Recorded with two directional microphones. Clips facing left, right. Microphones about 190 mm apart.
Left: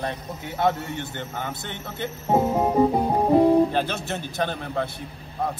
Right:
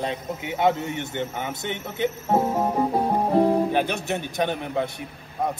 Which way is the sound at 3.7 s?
15° right (ahead or behind).